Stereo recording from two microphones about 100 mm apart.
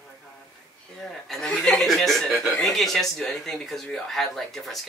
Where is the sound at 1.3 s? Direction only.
10° left (ahead or behind).